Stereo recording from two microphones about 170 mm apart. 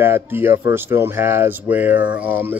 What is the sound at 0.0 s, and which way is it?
A man's voice, 15° right (ahead or behind).